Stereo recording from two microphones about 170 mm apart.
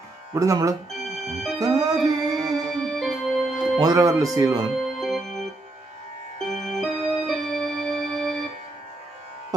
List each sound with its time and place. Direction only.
0.3 s speech: 20° right (ahead or behind)
1.0 s music: centre (ahead or behind)
1.6 s music: 20° right (ahead or behind)
2.7 s organ: centre (ahead or behind)
3.7 s speech: 20° right (ahead or behind)
4.8 s organ: centre (ahead or behind)
6.5 s music: centre (ahead or behind)